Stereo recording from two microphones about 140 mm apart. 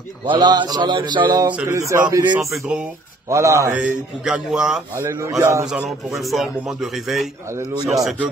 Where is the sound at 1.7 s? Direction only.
20° right (ahead or behind).